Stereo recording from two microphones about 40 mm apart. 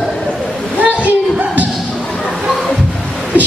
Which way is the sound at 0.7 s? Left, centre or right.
Right.